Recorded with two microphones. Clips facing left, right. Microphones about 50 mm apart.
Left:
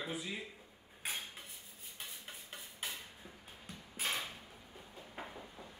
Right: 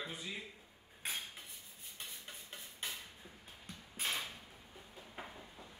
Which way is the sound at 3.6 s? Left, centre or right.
Centre.